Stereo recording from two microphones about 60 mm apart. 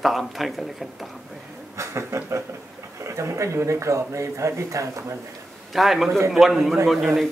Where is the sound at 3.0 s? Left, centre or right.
Right.